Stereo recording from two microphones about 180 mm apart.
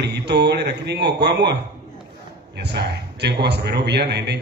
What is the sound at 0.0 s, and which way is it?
A man's voice, 65° right (ahead or behind).